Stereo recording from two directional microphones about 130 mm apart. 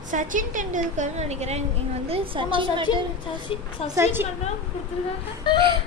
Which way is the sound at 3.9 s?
20° right (ahead or behind).